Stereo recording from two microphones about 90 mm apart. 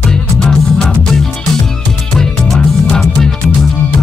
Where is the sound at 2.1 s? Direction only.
5° left (ahead or behind).